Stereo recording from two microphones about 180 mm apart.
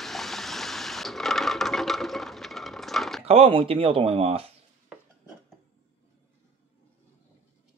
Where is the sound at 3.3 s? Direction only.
30° right (ahead or behind).